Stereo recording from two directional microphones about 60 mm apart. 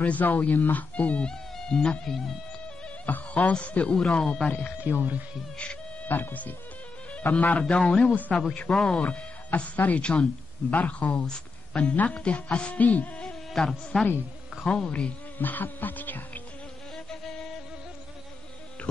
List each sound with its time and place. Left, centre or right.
0.0 s speech: left
1.3 s speech: centre
3.1 s a man's voice: left
4.5 s speech: left
6.0 s a man's voice: left; by 9.0 s centre
9.0 s speech: left
13.6 s speech: centre
14.6 s a man's voice: centre
15.3 s insect: left